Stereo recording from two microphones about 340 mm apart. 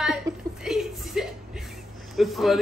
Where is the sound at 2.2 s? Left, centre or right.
Centre.